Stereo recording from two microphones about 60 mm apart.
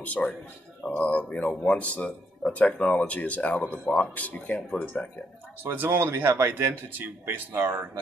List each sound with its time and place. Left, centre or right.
0.0 s speech: left
4.6 s speech: centre
5.6 s speech: right